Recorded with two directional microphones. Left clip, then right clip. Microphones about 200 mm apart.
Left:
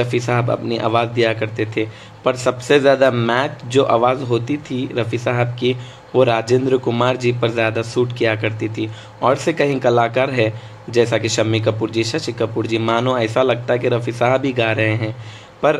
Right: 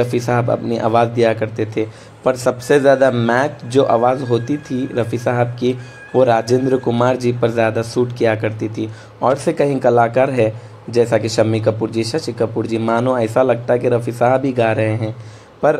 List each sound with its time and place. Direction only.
0.0 s speech: 15° right (ahead or behind)